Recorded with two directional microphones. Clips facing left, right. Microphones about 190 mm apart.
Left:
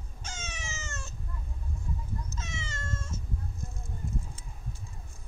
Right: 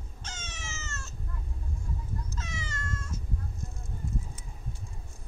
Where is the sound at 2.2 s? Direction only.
20° left (ahead or behind).